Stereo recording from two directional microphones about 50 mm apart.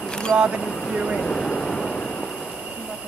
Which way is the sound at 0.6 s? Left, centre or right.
Centre.